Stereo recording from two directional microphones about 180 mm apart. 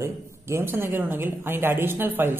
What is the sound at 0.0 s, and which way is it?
A woman's voice, 15° right (ahead or behind).